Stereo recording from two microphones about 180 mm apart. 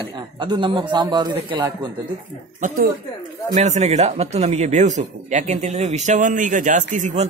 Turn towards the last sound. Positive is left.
turn(degrees=-45)  # may be behind; listen again after turning